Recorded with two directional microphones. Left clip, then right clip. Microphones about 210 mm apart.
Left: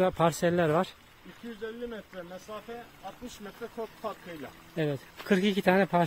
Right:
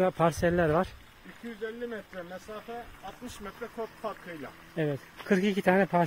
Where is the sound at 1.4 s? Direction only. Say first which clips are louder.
Right 1 dB; 40° right (ahead or behind).